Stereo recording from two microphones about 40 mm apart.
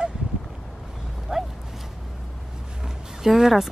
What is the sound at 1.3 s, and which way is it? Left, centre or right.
Dog, centre.